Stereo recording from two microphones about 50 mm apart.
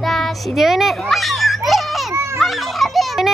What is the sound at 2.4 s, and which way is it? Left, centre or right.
Children playing, centre.